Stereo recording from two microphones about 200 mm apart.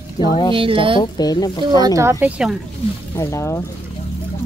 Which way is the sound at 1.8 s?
15° right (ahead or behind).